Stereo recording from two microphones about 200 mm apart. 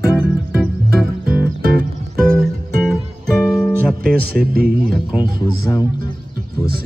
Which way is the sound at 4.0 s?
50° right (ahead or behind).